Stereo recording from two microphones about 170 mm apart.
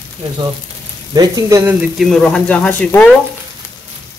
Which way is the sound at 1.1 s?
20° right (ahead or behind).